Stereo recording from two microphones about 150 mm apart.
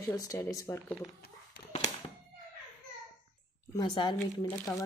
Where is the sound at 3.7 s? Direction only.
30° left (ahead or behind).